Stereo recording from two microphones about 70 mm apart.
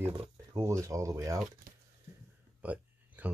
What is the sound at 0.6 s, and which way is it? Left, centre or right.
Speech, right.